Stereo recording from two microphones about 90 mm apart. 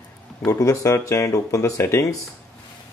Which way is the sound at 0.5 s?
35° left (ahead or behind).